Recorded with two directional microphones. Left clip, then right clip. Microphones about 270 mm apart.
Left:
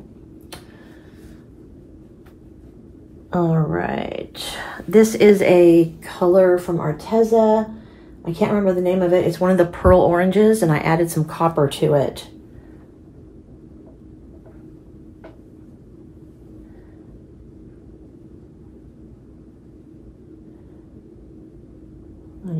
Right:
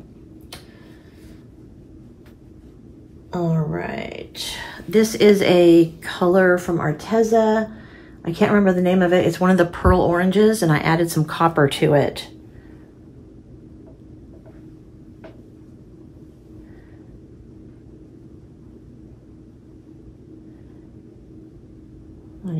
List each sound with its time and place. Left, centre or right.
3.3 s speech: left
4.7 s a woman's voice: centre
6.1 s speech: right
11.9 s a woman's voice: centre